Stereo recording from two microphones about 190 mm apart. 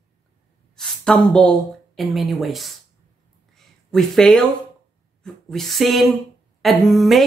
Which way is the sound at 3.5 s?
Centre (ahead or behind).